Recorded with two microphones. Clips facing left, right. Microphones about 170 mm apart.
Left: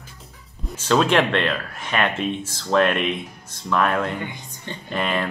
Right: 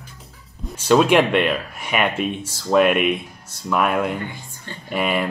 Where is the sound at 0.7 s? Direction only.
10° right (ahead or behind).